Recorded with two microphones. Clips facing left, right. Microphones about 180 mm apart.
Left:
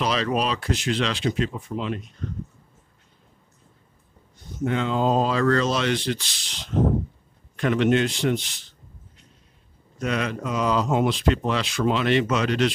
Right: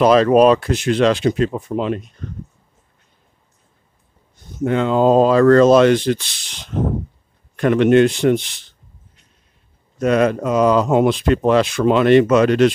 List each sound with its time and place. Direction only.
0.0 s speech: 50° right (ahead or behind)
4.6 s speech: 50° right (ahead or behind)
9.9 s speech: 45° right (ahead or behind)